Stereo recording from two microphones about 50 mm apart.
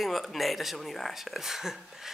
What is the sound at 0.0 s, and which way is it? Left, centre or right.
A woman's voice, centre.